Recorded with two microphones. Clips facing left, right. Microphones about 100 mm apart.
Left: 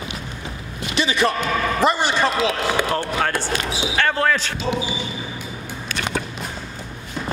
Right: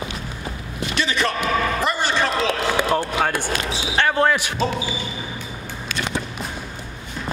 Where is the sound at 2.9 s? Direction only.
10° right (ahead or behind).